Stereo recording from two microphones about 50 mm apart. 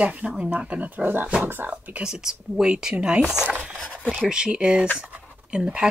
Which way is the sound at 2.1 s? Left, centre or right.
Centre.